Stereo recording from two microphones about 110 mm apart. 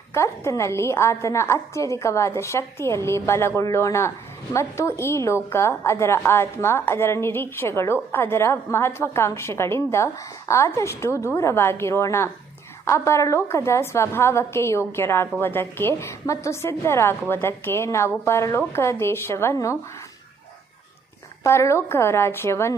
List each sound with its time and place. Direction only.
0.1 s a woman's voice: 25° left (ahead or behind)
21.5 s a woman's voice: 25° left (ahead or behind)